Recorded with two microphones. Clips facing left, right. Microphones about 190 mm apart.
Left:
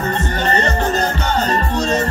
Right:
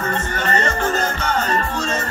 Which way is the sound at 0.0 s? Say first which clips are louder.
Left 3 dB; 35° left (ahead or behind).